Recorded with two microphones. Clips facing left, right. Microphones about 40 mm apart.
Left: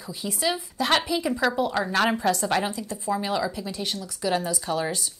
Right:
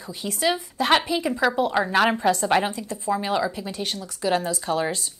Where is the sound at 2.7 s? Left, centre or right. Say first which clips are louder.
Right 2 dB; right.